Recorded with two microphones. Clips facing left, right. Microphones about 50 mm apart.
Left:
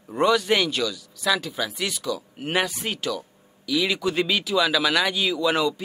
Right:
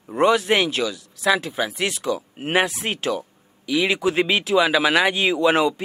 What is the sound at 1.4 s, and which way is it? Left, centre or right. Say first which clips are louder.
Speech: right 4 dB; right.